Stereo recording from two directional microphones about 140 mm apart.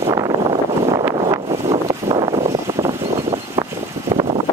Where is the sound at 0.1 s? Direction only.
30° right (ahead or behind).